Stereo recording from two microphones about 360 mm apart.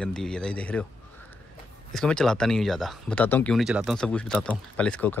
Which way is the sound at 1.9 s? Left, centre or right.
Centre.